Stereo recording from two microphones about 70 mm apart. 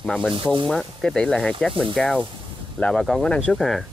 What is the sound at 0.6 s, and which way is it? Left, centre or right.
Speech, centre.